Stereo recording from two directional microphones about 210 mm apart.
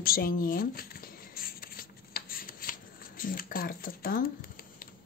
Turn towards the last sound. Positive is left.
turn(degrees=45)  # may be behind; listen again after turning